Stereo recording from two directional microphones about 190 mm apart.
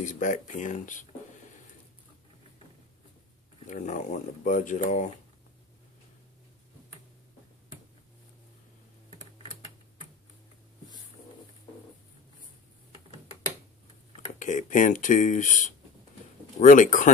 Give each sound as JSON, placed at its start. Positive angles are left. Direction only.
{"t": 0.0, "sound": "speech", "side_deg": 40}
{"t": 3.6, "sound": "speech", "side_deg": 40}
{"t": 14.4, "sound": "speech", "side_deg": 40}